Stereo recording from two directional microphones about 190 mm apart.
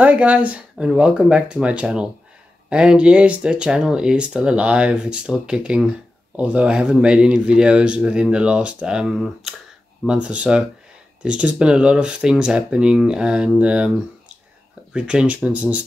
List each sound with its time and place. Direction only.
0.0 s speech: 5° right (ahead or behind)